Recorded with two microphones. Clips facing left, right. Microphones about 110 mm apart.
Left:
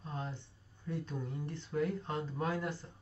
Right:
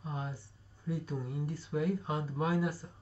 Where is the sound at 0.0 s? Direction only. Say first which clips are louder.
Right 2 dB; 10° right (ahead or behind).